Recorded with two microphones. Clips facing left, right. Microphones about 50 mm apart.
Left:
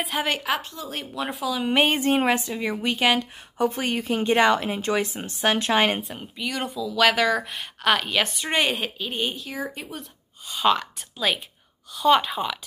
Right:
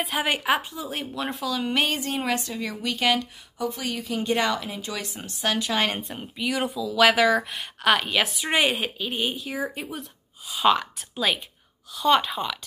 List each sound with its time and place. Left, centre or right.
0.0 s speech: centre
0.3 s speech: centre
1.7 s a woman's voice: left
3.5 s speech: left
5.9 s speech: centre